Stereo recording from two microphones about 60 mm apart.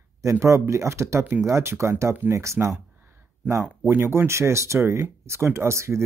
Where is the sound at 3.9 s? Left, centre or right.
Right.